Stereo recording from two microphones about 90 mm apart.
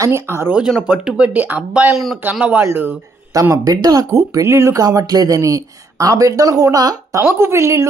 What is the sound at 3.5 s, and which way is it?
Speech, 40° right (ahead or behind).